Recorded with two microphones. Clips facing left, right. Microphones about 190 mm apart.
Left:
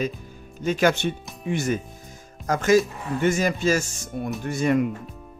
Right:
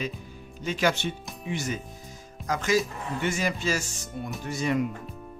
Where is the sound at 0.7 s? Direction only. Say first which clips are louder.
Left 5 dB; 50° left (ahead or behind).